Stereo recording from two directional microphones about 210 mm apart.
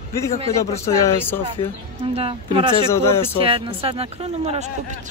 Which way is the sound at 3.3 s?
25° right (ahead or behind).